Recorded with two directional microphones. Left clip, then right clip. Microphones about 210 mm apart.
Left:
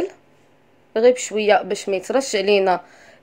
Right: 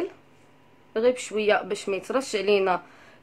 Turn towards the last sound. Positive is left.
turn(degrees=15)  # may be behind; listen again after turning